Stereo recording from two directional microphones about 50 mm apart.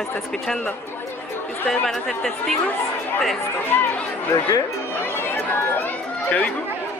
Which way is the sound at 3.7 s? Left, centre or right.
Left.